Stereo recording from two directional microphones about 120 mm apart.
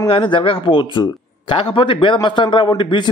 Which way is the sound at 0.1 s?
45° left (ahead or behind).